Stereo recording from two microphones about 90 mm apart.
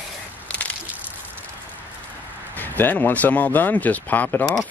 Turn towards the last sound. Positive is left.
turn(degrees=20)  # may be behind; listen again after turning